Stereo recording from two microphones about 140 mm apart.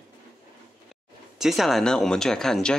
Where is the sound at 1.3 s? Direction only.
Centre (ahead or behind).